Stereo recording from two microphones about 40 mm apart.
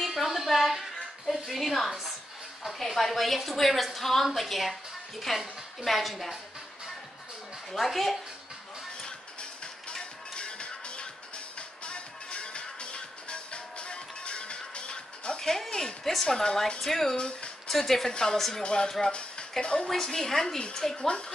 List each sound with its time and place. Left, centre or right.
0.0 s a sound: centre
1.5 s a woman's voice: centre
7.7 s a woman's voice: centre
9.0 s music: left
15.4 s a woman's voice: centre
18.9 s a woman's voice: centre
19.6 s speech: left
19.9 s a woman's voice: centre